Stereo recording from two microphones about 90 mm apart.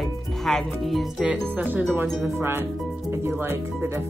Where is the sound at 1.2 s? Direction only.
15° right (ahead or behind).